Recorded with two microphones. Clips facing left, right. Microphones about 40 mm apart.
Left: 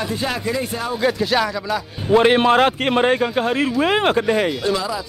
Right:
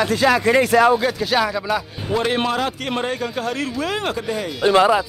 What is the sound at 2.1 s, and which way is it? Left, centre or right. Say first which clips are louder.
Speech: left 7 dB; left.